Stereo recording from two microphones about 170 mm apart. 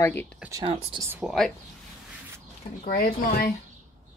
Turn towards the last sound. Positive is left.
turn(degrees=55)  # may be behind; listen again after turning